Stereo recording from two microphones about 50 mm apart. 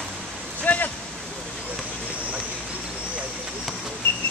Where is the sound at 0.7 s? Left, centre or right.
Left.